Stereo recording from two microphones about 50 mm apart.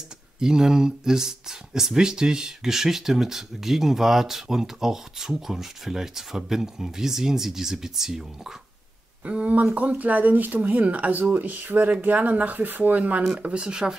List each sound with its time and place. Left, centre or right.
0.4 s speech: centre
9.2 s speech: right
13.4 s speech: centre